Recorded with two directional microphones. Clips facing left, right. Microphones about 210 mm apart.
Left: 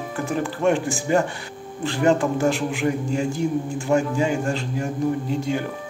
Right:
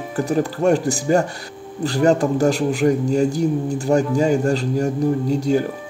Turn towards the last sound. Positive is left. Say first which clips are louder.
# right 6 dB
turn(degrees=-40)  # may be behind; listen again after turning